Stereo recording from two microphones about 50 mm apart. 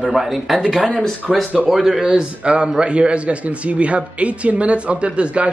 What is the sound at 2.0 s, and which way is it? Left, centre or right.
Speech, centre.